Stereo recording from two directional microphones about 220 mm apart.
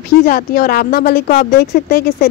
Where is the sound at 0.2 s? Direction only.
40° left (ahead or behind).